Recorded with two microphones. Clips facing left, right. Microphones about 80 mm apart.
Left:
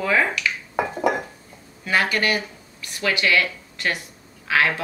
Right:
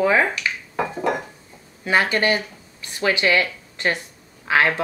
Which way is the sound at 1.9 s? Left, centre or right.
Right.